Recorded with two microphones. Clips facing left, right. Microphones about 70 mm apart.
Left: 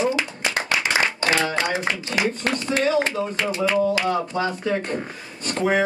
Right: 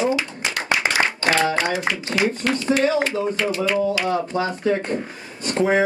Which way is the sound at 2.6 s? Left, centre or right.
Right.